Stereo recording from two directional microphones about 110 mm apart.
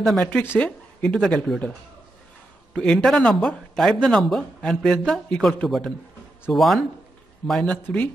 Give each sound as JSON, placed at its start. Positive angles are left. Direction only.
{"t": 0.0, "sound": "speech", "side_deg": 5}
{"t": 2.7, "sound": "a man's voice", "side_deg": 10}
{"t": 7.8, "sound": "a man's voice", "side_deg": 15}